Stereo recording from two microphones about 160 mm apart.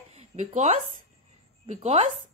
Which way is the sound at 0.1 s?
40° right (ahead or behind).